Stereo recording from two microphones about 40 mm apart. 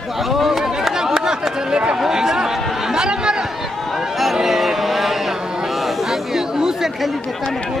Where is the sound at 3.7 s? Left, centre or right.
Centre.